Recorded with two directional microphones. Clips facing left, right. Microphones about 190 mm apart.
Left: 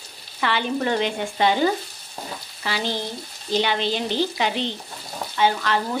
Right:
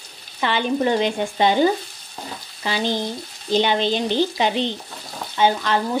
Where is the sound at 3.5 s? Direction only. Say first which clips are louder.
Right 3 dB; 20° right (ahead or behind).